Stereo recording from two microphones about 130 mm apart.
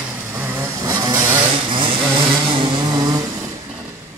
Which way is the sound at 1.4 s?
40° right (ahead or behind).